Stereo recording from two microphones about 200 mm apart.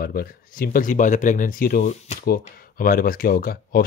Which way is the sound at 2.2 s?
45° left (ahead or behind).